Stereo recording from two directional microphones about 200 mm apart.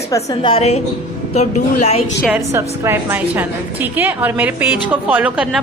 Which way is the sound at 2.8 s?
10° right (ahead or behind).